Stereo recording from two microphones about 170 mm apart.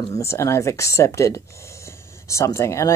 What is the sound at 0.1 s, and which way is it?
Speech, 15° left (ahead or behind).